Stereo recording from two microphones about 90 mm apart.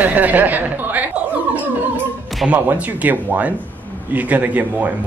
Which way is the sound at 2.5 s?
20° right (ahead or behind).